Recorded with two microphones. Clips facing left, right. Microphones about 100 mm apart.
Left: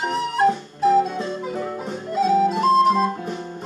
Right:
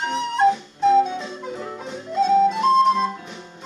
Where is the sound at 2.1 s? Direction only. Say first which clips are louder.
Right 1 dB; 5° left (ahead or behind).